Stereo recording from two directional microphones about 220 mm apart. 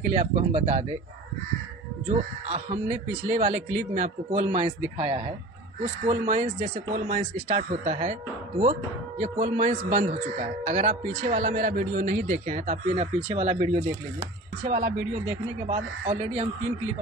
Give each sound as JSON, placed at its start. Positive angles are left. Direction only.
{"t": 0.1, "sound": "speech", "side_deg": -30}
{"t": 2.5, "sound": "a man's voice", "side_deg": -30}